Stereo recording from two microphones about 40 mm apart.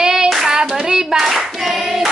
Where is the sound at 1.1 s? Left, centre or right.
Centre.